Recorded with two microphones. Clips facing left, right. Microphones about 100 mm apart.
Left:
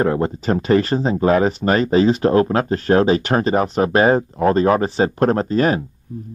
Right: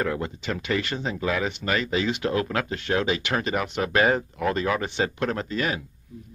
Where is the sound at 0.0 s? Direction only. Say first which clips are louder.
Left 9 dB; 35° left (ahead or behind).